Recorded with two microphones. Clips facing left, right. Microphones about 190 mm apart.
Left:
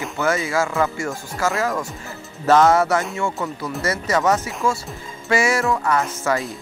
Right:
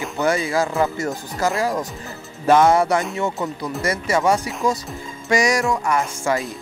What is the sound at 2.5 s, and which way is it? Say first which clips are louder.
Speech: even; 15° right (ahead or behind).